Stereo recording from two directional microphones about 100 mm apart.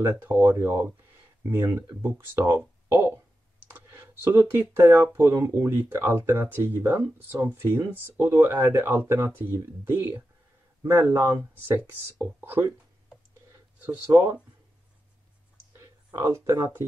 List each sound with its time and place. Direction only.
0.0 s speech: 25° right (ahead or behind)
2.5 s a sound: 25° right (ahead or behind)
3.6 s speech: 25° right (ahead or behind)
16.1 s speech: 30° right (ahead or behind)